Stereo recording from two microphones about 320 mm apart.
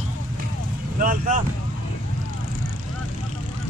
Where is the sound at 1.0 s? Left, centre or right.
Right.